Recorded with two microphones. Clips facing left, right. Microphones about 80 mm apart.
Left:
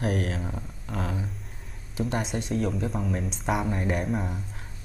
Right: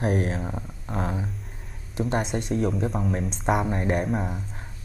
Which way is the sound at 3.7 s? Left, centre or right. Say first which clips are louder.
Right 3 dB; right.